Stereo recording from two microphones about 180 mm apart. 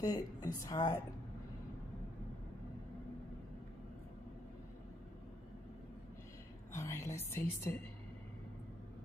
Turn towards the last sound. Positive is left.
turn(degrees=15)  # may be behind; listen again after turning